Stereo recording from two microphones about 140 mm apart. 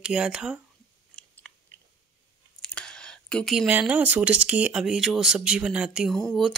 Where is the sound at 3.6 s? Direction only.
10° right (ahead or behind).